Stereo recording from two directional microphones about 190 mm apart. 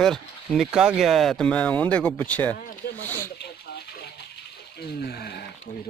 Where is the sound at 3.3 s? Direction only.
60° left (ahead or behind).